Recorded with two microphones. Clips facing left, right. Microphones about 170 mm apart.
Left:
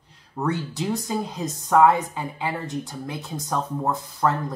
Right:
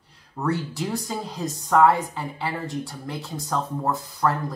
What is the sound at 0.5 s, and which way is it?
A woman's voice, 20° left (ahead or behind).